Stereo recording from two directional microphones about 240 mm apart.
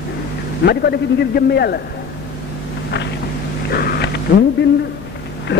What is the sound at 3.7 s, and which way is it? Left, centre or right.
Bee, left.